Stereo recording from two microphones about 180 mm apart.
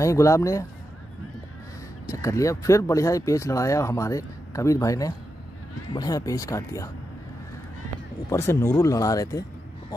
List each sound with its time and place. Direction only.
0.0 s speech: 15° left (ahead or behind)
2.1 s speech: 15° left (ahead or behind)
8.3 s speech: 15° left (ahead or behind)